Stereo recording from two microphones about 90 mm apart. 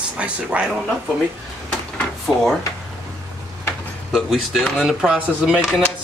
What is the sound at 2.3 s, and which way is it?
Speech, 5° left (ahead or behind).